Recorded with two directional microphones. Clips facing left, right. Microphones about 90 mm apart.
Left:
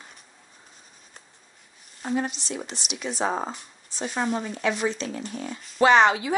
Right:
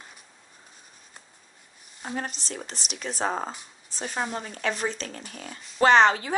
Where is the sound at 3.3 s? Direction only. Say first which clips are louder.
Even; 40° left (ahead or behind).